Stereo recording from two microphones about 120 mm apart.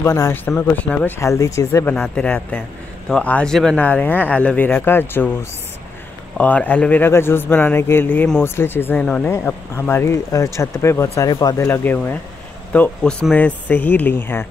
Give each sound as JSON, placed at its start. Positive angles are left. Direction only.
{"t": 0.0, "sound": "speech", "side_deg": 25}
{"t": 0.6, "sound": "speech", "side_deg": 10}
{"t": 1.9, "sound": "speech", "side_deg": 15}